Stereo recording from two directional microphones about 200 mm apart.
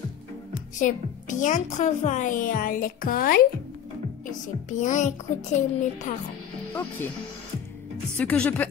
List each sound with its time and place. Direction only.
0.7 s a woman's voice: 40° left (ahead or behind)
4.6 s a woman's voice: 40° left (ahead or behind)
8.2 s speech: 10° left (ahead or behind)